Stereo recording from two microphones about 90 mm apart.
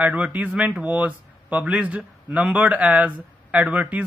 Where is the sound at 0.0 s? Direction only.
15° right (ahead or behind).